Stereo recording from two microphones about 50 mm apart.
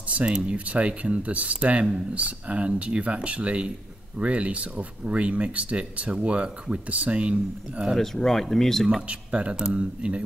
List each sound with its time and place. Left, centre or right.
0.3 s speech: centre
0.7 s speech: right
7.9 s speech: centre
9.0 s speech: right